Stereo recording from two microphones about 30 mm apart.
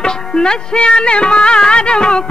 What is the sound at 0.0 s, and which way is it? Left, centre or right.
Music, left.